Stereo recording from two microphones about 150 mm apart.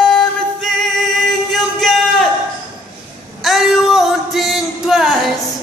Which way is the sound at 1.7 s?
5° left (ahead or behind).